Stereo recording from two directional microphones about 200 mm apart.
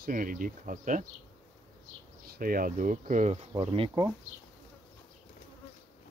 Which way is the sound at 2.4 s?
45° right (ahead or behind).